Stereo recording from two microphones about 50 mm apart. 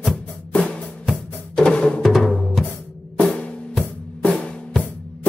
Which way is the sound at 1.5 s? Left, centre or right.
Centre.